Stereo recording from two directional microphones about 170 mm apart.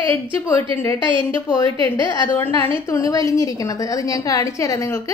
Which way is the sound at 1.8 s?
20° left (ahead or behind).